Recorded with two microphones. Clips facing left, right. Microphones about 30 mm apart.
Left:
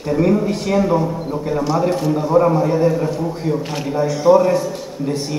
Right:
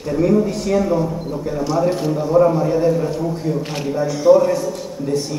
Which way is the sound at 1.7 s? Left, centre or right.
Centre.